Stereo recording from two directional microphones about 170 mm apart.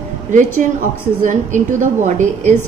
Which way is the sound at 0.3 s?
50° right (ahead or behind).